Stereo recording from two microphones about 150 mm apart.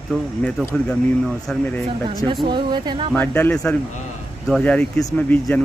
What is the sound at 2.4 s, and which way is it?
Speech, 30° right (ahead or behind).